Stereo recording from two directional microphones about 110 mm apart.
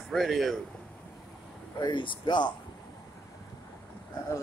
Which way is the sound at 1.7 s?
45° left (ahead or behind).